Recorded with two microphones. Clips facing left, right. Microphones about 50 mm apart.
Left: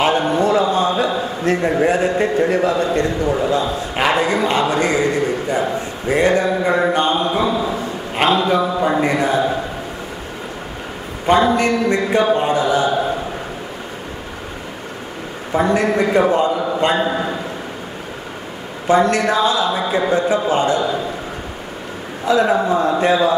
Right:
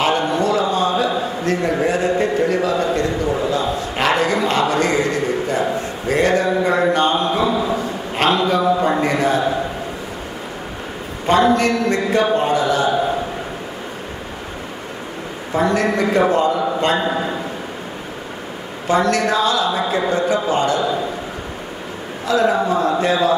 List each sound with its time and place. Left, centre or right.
0.3 s a sound: left
1.7 s speech: centre
2.5 s speech: left
3.0 s a man's voice: centre
11.2 s a man's voice: centre
15.5 s a man's voice: centre
18.9 s a man's voice: centre
22.2 s speech: left